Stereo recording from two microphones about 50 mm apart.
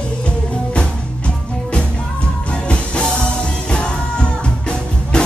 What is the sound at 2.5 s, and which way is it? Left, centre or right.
Music, left.